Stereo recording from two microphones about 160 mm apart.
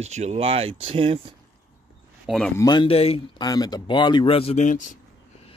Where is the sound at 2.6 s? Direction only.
30° left (ahead or behind).